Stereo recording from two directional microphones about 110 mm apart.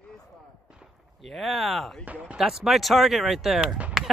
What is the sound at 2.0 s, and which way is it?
Speech, 10° right (ahead or behind).